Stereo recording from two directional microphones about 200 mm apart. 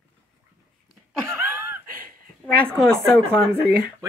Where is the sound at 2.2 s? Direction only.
50° right (ahead or behind).